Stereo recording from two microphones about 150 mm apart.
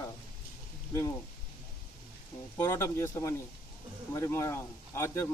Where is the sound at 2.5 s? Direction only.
20° left (ahead or behind).